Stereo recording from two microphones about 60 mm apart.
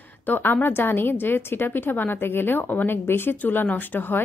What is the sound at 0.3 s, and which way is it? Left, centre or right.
A woman's voice, left.